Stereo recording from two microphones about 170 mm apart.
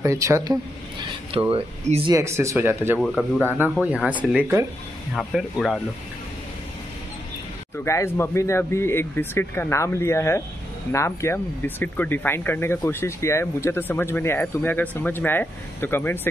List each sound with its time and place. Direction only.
0.0 s speech: 15° right (ahead or behind)
1.5 s speech: 35° right (ahead or behind)
2.1 s speech: 15° right (ahead or behind)
3.0 s speech: 5° left (ahead or behind)
3.8 s speech: 5° right (ahead or behind)
5.1 s speech: centre (ahead or behind)
7.7 s speech: 15° left (ahead or behind)